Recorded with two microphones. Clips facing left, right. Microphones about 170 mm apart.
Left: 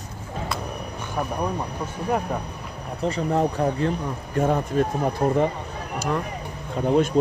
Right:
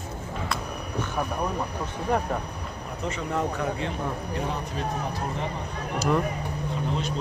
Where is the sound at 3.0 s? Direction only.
35° left (ahead or behind); by 5.5 s 50° left (ahead or behind).